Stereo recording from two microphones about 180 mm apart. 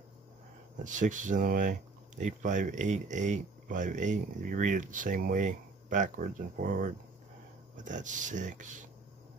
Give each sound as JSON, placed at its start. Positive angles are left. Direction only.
{"t": 0.8, "sound": "speech", "side_deg": -45}